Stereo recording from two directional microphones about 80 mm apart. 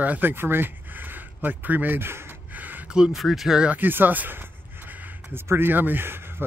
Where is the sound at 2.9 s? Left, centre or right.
Centre.